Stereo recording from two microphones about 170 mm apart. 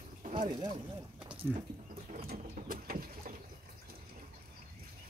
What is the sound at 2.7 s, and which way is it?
Vehicle, 55° right (ahead or behind).